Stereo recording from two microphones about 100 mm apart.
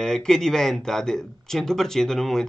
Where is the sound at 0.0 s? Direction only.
5° left (ahead or behind).